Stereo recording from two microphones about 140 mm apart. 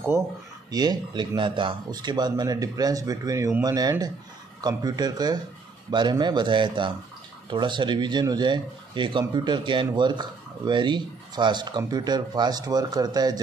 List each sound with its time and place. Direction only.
0.7 s speech: 30° right (ahead or behind)